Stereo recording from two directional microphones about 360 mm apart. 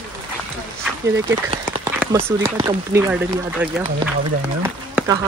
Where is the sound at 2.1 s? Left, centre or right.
Centre.